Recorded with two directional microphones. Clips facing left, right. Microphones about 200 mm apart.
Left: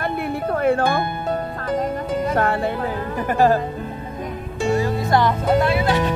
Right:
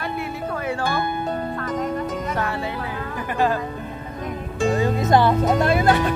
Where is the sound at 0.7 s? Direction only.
55° left (ahead or behind).